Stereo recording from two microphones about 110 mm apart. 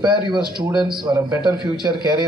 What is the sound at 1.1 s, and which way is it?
Speech, 40° right (ahead or behind).